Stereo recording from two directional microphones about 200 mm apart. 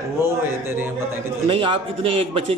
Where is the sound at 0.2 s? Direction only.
10° right (ahead or behind).